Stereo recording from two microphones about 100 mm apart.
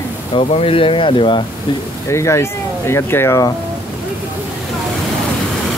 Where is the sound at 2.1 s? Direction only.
30° left (ahead or behind).